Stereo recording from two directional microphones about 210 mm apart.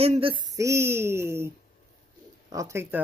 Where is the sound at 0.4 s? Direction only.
15° right (ahead or behind).